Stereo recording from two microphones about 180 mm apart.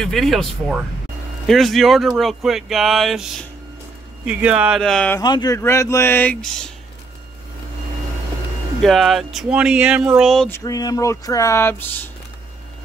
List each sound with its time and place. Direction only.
0.0 s speech: centre (ahead or behind)
5.2 s speech: 20° left (ahead or behind); by 6.7 s 5° left (ahead or behind)
8.8 s speech: centre (ahead or behind)
10.5 s speech: 20° left (ahead or behind)